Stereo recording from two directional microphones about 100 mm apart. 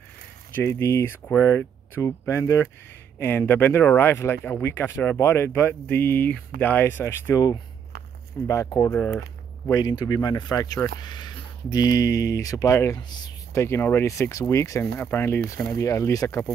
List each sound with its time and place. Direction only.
0.6 s speech: 30° left (ahead or behind)
8.5 s speech: 35° left (ahead or behind)
9.7 s speech: 40° left (ahead or behind); by 15.4 s 20° left (ahead or behind)
15.7 s speech: 35° left (ahead or behind)